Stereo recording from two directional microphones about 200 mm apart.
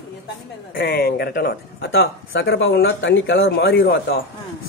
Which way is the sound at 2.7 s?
60° left (ahead or behind).